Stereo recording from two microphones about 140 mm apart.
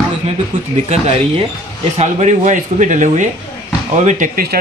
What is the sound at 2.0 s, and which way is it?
Speech, 55° right (ahead or behind).